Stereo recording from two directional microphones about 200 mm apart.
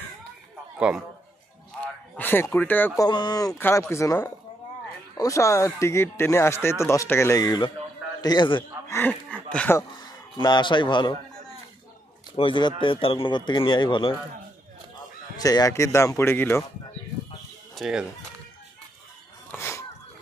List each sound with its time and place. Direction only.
0.7 s a man's voice: 5° right (ahead or behind)
1.8 s speech: 10° left (ahead or behind)
3.1 s a man's voice: 20° left (ahead or behind)
8.9 s speech: 10° left (ahead or behind)
12.4 s speech: 25° left (ahead or behind)
15.3 s speech: 20° left (ahead or behind)
17.7 s speech: centre (ahead or behind)
19.5 s a sound: 15° left (ahead or behind)